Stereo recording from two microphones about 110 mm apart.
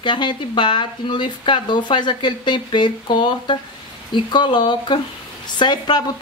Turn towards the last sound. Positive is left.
turn(degrees=45)  # may be behind; listen again after turning